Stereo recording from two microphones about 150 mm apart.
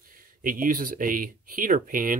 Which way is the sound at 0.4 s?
65° right (ahead or behind).